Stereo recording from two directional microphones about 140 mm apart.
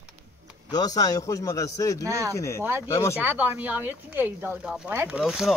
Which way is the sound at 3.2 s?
15° right (ahead or behind).